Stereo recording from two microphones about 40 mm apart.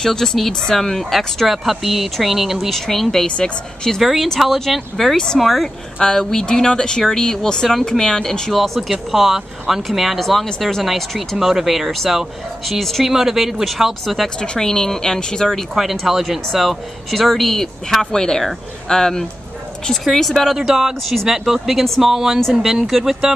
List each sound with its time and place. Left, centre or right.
0.0 s speech: centre
2.7 s speech: centre
3.3 s speech: left
4.0 s speech: centre
5.1 s speech: centre
5.4 s speech: centre
5.9 s speech: centre
10.1 s speech: centre
13.0 s speech: centre
14.0 s speech: centre
14.4 s speech: centre
15.7 s speech: centre
20.5 s speech: centre
22.8 s speech: centre